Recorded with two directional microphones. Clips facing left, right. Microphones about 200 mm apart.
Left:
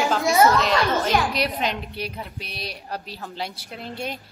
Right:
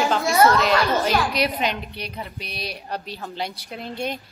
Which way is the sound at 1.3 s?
Centre (ahead or behind).